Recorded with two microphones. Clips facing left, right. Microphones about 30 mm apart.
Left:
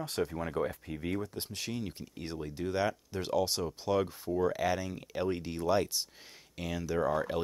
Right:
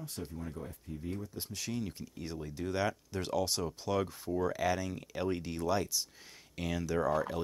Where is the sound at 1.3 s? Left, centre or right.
Left; by 5.7 s centre.